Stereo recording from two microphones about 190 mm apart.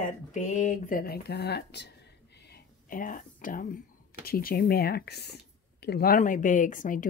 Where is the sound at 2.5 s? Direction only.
45° left (ahead or behind).